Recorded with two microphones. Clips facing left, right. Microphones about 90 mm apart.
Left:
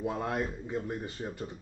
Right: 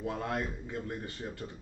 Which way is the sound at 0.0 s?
20° left (ahead or behind).